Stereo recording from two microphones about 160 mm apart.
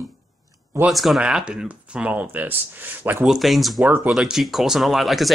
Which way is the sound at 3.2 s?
Centre (ahead or behind).